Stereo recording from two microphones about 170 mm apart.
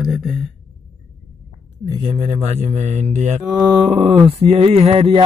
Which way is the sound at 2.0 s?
35° right (ahead or behind).